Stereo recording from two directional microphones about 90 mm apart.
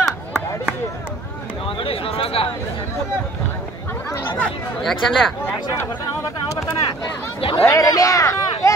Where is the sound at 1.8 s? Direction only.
90° left.